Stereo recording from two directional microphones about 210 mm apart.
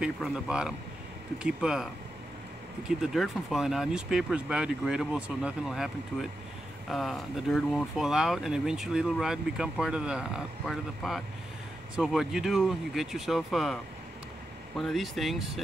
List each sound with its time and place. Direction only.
0.0 s speech: 5° right (ahead or behind)
3.0 s speech: centre (ahead or behind)
6.9 s speech: centre (ahead or behind)
14.8 s speech: centre (ahead or behind)